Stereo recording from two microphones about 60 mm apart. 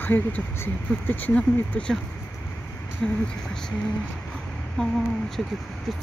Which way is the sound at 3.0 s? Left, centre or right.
Centre.